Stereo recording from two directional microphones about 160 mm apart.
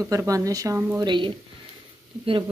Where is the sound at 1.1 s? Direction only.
30° right (ahead or behind).